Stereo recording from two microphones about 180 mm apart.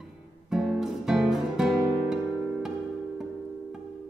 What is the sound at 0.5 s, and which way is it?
Guitar, centre (ahead or behind).